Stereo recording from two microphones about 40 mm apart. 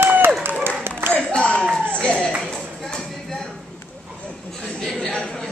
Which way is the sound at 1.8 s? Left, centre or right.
Left.